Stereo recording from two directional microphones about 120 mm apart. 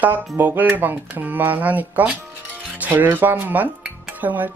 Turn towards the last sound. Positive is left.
turn(degrees=-15)  # may be behind; listen again after turning